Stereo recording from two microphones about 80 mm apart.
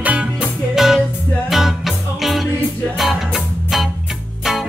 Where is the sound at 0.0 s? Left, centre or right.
Centre.